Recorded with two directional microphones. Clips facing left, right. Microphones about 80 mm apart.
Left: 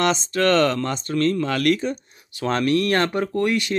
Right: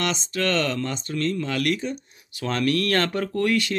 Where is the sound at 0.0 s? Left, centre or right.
Left.